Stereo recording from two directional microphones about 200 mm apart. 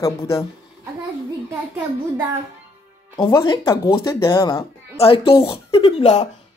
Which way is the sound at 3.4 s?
25° left (ahead or behind).